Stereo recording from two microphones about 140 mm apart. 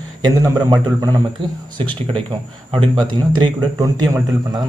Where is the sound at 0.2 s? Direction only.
30° right (ahead or behind).